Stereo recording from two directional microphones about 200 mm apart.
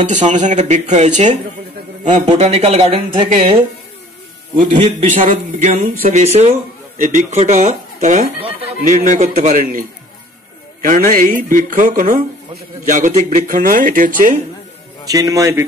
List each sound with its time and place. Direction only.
0.0 s speech: 35° right (ahead or behind)
4.6 s speech: 40° right (ahead or behind)
15.0 s a man's voice: 15° right (ahead or behind)